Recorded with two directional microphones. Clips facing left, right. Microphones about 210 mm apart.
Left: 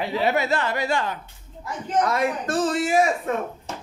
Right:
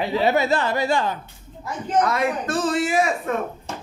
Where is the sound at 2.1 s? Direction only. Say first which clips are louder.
Even; 50° left (ahead or behind).